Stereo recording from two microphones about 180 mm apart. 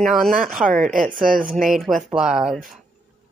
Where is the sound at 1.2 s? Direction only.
50° right (ahead or behind).